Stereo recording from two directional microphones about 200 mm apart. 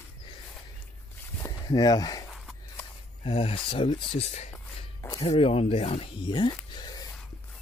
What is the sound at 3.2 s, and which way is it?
Speech, 30° left (ahead or behind).